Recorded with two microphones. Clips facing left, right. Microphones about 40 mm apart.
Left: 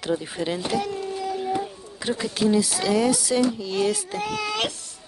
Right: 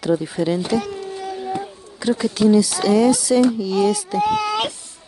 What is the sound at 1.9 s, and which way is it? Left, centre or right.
Speech, centre.